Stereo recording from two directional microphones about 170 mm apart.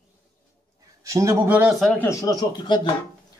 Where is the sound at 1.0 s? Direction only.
20° right (ahead or behind).